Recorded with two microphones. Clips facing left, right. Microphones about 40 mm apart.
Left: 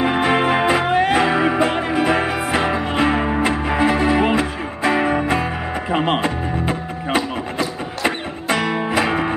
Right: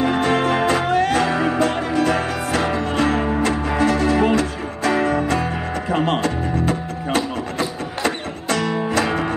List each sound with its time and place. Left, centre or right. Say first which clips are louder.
0.0 s music: left 1 dB; left